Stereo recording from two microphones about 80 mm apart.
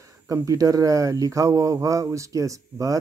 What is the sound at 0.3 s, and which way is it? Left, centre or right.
Speech, right.